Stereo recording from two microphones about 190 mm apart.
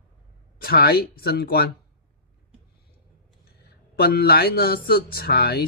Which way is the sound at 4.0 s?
55° left (ahead or behind).